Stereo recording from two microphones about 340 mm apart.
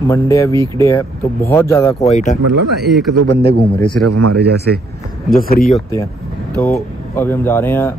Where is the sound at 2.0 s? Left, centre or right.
Left.